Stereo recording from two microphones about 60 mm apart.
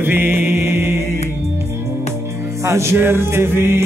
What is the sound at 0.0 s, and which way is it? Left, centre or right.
Mantra, right.